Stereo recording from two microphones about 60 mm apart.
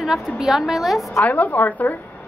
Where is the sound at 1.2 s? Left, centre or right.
Left.